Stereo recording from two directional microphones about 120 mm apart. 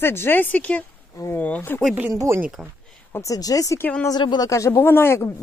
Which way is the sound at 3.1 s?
25° left (ahead or behind).